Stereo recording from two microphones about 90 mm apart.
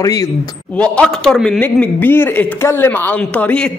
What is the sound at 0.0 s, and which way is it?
Speech, 40° left (ahead or behind).